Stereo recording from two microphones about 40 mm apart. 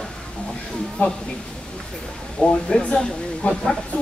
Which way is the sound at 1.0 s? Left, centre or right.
Left.